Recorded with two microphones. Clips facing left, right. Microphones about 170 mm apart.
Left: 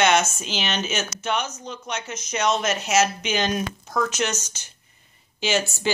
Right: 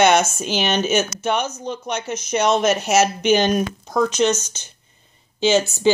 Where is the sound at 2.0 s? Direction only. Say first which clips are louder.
Right 5 dB; 55° right (ahead or behind).